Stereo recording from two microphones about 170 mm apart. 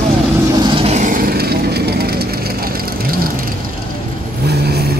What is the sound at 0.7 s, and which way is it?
Vehicle, 35° right (ahead or behind).